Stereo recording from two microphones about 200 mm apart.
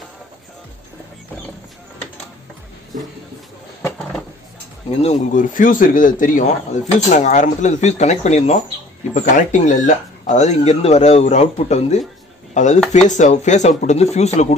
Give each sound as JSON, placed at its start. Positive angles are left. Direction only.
{"t": 5.0, "sound": "a man's voice", "side_deg": 35}